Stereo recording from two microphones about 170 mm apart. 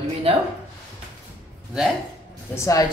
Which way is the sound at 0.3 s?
35° right (ahead or behind).